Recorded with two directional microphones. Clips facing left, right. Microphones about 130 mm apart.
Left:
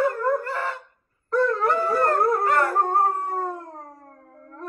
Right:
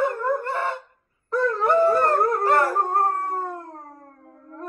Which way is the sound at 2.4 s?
30° right (ahead or behind).